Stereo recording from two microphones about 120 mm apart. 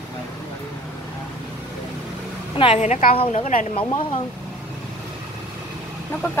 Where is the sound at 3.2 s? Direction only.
60° left (ahead or behind).